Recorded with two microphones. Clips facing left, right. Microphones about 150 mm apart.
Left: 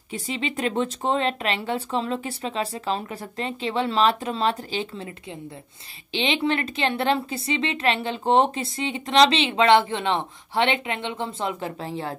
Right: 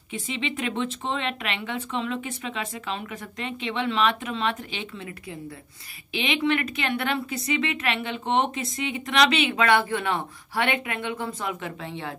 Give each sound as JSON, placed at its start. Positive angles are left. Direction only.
{"t": 0.1, "sound": "a woman's voice", "side_deg": 35}